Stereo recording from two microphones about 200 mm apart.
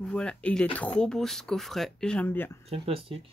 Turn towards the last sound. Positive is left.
turn(degrees=-30)  # may be behind; listen again after turning